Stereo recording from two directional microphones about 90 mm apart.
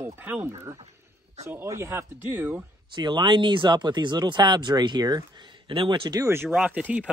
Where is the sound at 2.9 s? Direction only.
60° right (ahead or behind).